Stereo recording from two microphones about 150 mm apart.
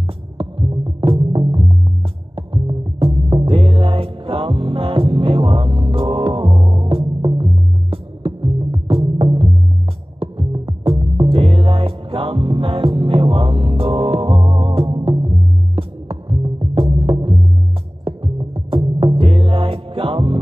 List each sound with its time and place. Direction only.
0.4 s music: 35° right (ahead or behind)